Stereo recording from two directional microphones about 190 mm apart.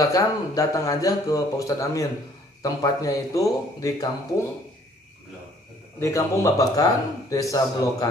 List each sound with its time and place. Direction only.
0.0 s speech: 20° left (ahead or behind)
5.9 s speech: 15° left (ahead or behind)